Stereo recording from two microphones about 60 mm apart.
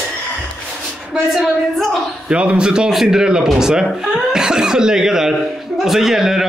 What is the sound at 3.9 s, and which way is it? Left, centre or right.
Throat clearing, centre.